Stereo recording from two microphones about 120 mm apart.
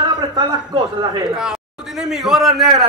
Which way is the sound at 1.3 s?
5° right (ahead or behind).